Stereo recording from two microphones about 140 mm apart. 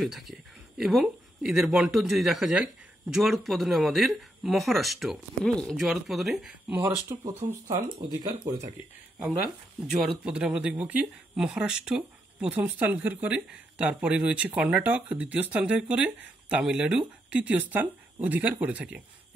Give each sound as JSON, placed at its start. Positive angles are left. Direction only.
{"t": 0.0, "sound": "speech", "side_deg": 0}
{"t": 6.7, "sound": "speech", "side_deg": -20}
{"t": 9.8, "sound": "speech", "side_deg": -5}